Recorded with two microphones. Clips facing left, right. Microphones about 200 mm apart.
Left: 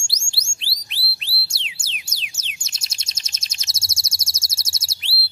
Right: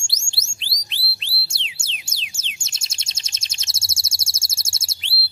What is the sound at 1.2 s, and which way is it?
Music, 25° right (ahead or behind).